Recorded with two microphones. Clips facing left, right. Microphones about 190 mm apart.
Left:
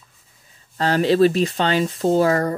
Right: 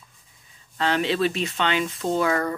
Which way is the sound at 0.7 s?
40° left (ahead or behind).